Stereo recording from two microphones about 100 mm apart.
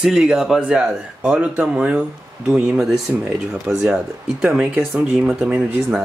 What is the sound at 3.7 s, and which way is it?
Speech, 25° right (ahead or behind).